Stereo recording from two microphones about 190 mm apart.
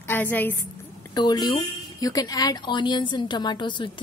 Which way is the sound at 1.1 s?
20° left (ahead or behind).